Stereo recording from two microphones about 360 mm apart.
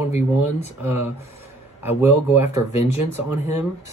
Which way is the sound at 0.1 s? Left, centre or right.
Centre.